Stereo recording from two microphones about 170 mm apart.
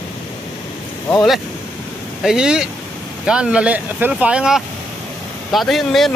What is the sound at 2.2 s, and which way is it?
Speech, 5° right (ahead or behind).